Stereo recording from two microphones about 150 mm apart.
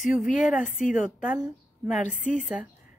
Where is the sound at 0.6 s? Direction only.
60° left (ahead or behind).